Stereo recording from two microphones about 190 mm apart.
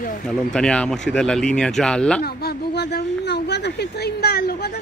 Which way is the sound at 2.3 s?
55° left (ahead or behind).